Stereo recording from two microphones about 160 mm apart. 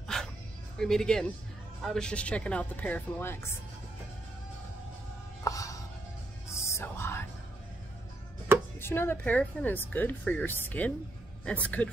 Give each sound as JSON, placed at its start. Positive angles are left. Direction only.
{"t": 0.1, "sound": "dog", "side_deg": 5}
{"t": 0.7, "sound": "speech", "side_deg": 5}
{"t": 5.4, "sound": "music", "side_deg": 20}
{"t": 8.7, "sound": "speech", "side_deg": 15}